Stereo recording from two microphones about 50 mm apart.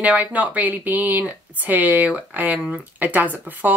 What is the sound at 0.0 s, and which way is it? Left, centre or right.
A woman's voice, right.